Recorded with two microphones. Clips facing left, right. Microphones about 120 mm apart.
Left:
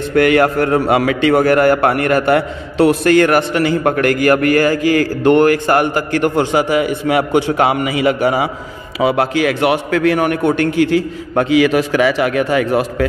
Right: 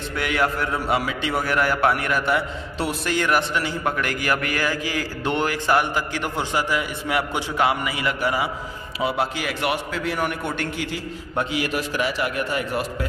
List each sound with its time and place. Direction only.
0.1 s a man's voice: 60° left (ahead or behind)
11.3 s a man's voice: 90° left